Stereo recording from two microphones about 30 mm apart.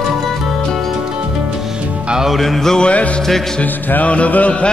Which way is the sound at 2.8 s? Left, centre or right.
Left.